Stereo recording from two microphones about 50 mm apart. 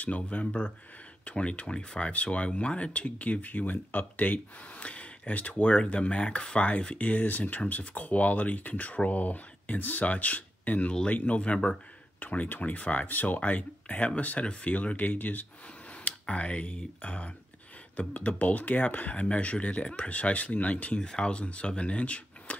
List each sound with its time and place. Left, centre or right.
0.0 s speech: left
14.7 s speech: left
15.9 s speech: left